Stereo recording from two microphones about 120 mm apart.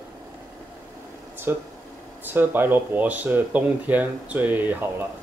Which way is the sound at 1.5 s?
20° right (ahead or behind).